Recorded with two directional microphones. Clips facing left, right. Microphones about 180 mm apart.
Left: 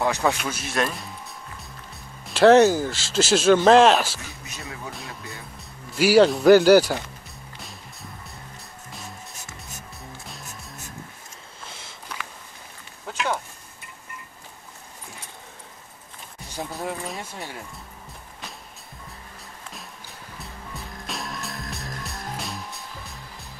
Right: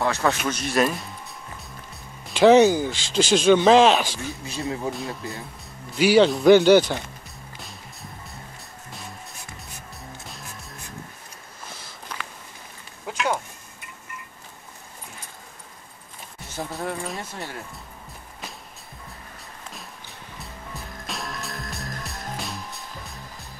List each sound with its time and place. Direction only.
0.0 s speech: 15° left (ahead or behind)
0.4 s speech: 5° left (ahead or behind)
2.2 s speech: centre (ahead or behind)
4.5 s speech: 30° right (ahead or behind)
5.9 s speech: 5° left (ahead or behind)
16.7 s a sound: centre (ahead or behind)
20.3 s music: centre (ahead or behind)